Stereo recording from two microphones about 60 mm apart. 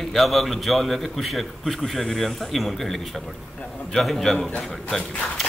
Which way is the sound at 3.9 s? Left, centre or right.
Centre.